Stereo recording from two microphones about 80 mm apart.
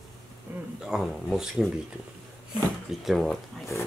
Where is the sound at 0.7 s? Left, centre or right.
Centre.